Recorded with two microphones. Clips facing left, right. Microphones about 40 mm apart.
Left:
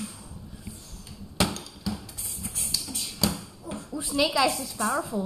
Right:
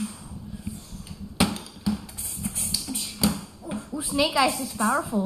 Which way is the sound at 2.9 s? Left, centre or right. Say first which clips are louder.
Right 3 dB; centre.